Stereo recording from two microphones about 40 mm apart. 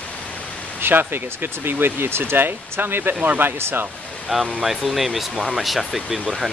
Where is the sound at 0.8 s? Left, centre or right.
Right.